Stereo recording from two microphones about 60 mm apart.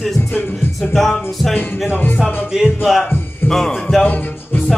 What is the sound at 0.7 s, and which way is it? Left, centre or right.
Music, centre.